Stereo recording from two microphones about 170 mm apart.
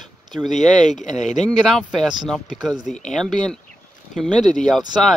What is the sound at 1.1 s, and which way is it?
Speech, 45° left (ahead or behind).